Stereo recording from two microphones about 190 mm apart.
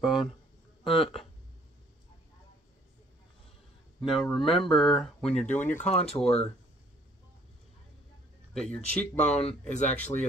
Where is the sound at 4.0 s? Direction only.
Centre (ahead or behind).